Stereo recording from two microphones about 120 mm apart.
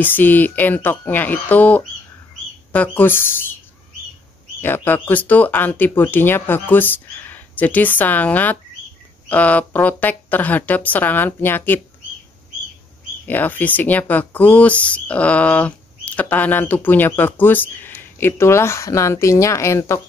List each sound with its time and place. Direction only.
0.0 s speech: 15° left (ahead or behind)
4.6 s speech: 15° left (ahead or behind)
13.3 s speech: 15° left (ahead or behind)